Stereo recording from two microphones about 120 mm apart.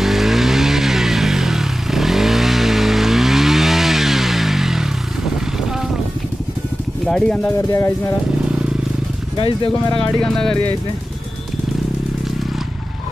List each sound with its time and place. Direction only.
0.0 s vehicle: centre (ahead or behind)
7.1 s speech: 5° left (ahead or behind)
7.5 s speech: 25° left (ahead or behind)
9.7 s speech: 10° left (ahead or behind)